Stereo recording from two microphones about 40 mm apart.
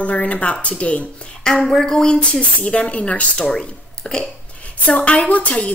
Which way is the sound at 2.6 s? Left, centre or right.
Left.